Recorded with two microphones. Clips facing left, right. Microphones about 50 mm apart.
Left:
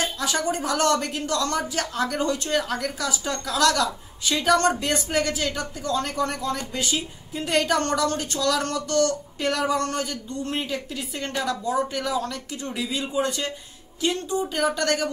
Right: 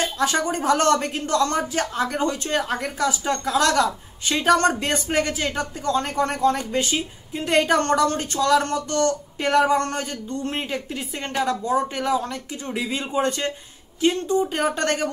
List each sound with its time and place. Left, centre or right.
0.0 s a woman's voice: right